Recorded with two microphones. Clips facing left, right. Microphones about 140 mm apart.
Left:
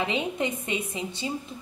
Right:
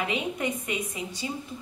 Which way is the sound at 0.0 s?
25° left (ahead or behind).